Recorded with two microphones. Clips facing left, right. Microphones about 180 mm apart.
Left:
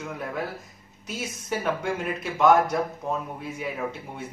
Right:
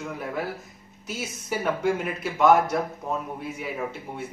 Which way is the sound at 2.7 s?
Centre (ahead or behind).